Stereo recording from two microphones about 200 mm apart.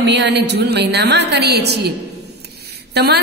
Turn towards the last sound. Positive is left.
turn(degrees=-55)  # may be behind; listen again after turning